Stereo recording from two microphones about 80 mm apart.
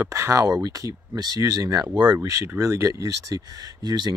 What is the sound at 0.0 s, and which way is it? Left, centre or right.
Speech, right.